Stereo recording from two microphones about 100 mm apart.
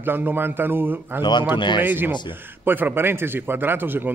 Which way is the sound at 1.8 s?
20° right (ahead or behind).